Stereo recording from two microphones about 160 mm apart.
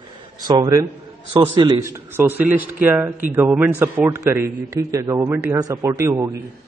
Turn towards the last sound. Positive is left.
turn(degrees=-20)  # may be behind; listen again after turning